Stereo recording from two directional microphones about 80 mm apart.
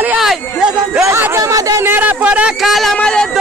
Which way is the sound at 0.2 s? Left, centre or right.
Centre.